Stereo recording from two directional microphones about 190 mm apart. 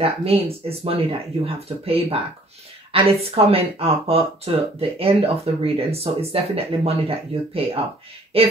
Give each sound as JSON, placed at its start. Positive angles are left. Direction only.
{"t": 0.0, "sound": "speech", "side_deg": -30}